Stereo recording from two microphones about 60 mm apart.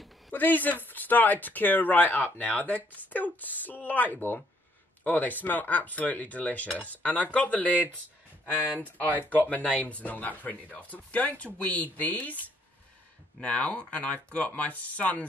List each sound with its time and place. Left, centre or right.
0.3 s speech: left
7.7 s speech: right
9.3 s speech: left